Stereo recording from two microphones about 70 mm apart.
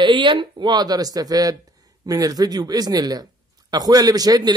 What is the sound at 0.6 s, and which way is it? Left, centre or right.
Speech, right.